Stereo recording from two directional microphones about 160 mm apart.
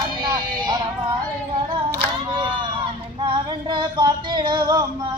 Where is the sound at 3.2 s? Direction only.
30° right (ahead or behind).